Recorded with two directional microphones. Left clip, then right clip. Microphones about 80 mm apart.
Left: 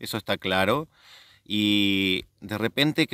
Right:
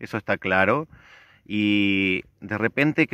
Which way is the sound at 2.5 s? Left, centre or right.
Centre.